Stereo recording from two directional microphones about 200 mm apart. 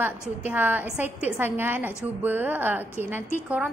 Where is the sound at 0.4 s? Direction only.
10° right (ahead or behind).